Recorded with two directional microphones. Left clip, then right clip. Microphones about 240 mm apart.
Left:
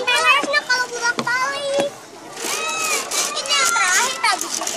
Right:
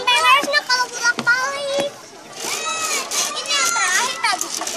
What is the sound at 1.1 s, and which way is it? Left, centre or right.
Children playing, right.